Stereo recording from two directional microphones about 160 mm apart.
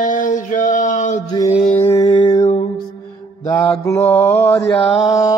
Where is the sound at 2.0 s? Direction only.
30° left (ahead or behind).